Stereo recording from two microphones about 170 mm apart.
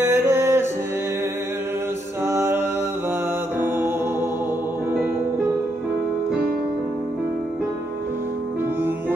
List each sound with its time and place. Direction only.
0.0 s music: 15° right (ahead or behind)
2.2 s music: 15° right (ahead or behind)
3.6 s music: 15° right (ahead or behind)